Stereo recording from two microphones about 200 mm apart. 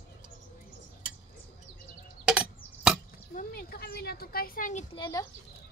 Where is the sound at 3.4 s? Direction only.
50° left (ahead or behind).